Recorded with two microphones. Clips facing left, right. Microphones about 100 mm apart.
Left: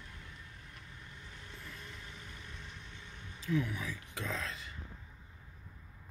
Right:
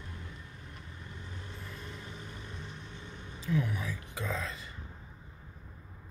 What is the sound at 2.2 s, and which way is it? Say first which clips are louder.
Vehicle: right 5 dB; 35° right (ahead or behind).